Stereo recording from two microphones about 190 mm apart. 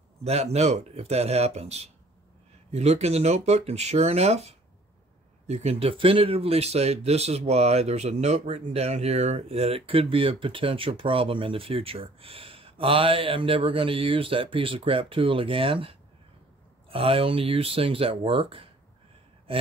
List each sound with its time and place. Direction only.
0.2 s speech: 35° right (ahead or behind)